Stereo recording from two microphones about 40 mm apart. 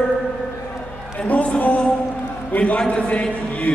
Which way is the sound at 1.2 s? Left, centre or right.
Left.